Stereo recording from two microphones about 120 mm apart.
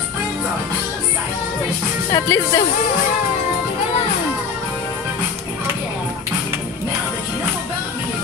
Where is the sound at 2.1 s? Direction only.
25° left (ahead or behind).